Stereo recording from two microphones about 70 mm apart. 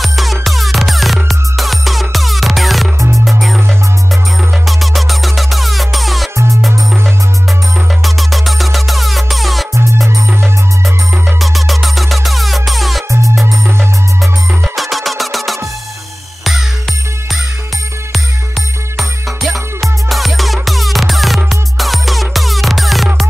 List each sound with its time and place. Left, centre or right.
0.0 s music: centre
4.6 s music: centre
6.3 s music: right
8.0 s music: centre
11.3 s music: centre
13.1 s music: right
14.2 s music: centre
18.9 s music: centre